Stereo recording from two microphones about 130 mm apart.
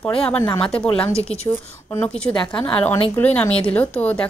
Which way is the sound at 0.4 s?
10° left (ahead or behind).